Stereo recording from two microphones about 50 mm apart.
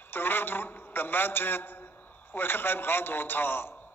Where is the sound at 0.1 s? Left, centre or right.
Left.